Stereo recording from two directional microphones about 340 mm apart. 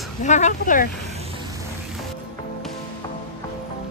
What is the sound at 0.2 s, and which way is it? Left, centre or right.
Speech, left.